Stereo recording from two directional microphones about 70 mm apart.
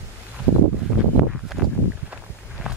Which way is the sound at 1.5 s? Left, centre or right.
Centre.